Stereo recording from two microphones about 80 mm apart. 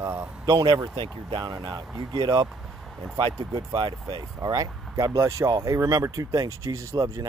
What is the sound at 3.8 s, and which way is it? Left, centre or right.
Speech, right.